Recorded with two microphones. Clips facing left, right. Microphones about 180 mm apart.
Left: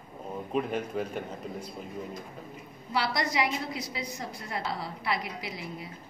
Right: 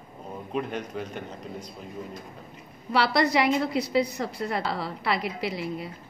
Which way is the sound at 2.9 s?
65° right (ahead or behind).